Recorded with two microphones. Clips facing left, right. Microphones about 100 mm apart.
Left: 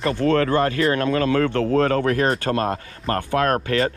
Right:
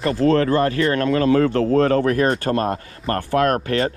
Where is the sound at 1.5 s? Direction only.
25° right (ahead or behind).